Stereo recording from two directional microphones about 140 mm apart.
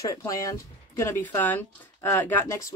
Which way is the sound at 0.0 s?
25° left (ahead or behind).